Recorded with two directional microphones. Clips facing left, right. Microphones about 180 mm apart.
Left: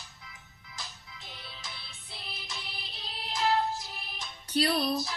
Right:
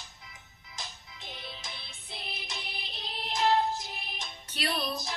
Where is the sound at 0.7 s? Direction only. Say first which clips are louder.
Right 1 dB; 20° right (ahead or behind).